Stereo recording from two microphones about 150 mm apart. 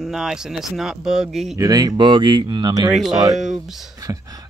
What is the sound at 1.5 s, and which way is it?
Speech, 25° right (ahead or behind).